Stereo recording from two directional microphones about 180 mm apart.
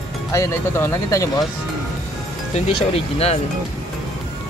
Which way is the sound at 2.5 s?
35° left (ahead or behind).